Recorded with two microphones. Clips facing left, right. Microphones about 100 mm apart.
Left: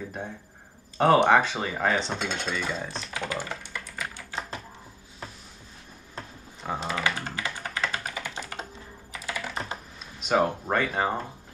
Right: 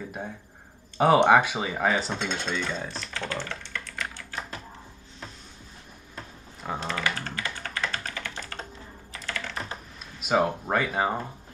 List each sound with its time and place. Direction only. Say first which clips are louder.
0.9 s speech: right 1 dB; 5° right (ahead or behind)
3.1 s speech: left 2 dB; 15° left (ahead or behind)
4.3 s typing: left 2 dB; 25° left (ahead or behind)
6.6 s typing: left 1 dB; 5° left (ahead or behind)
7.0 s computer keyboard: left 1 dB; 15° left (ahead or behind)
10.2 s speech: even; 5° right (ahead or behind)